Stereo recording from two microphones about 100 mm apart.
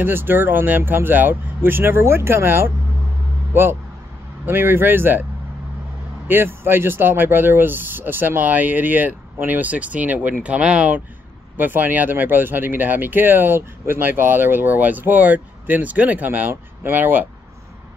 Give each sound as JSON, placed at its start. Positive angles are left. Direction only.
{"t": 0.0, "sound": "speech", "side_deg": -20}
{"t": 6.2, "sound": "speech", "side_deg": -20}